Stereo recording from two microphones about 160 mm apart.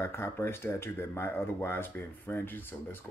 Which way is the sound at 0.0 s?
15° left (ahead or behind).